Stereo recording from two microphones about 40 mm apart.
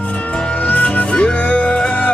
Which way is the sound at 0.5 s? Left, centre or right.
Left.